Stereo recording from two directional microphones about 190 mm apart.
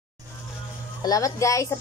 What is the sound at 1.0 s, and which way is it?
Speech, 15° left (ahead or behind).